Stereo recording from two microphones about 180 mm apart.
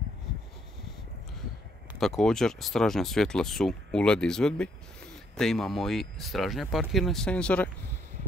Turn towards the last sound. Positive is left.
turn(degrees=5)  # may be behind; listen again after turning